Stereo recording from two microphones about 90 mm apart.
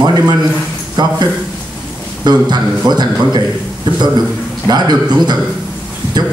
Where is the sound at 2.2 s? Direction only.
50° right (ahead or behind).